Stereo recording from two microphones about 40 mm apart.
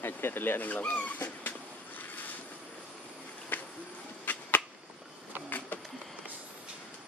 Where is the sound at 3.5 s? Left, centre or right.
Left.